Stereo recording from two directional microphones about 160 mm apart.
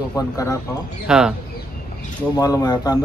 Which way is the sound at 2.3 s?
25° left (ahead or behind).